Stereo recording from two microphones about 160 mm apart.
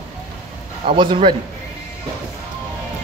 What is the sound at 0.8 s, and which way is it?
Speech, 35° right (ahead or behind).